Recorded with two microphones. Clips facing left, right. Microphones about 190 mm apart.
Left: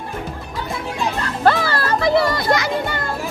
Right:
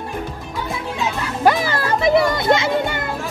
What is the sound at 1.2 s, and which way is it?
Music, 15° right (ahead or behind).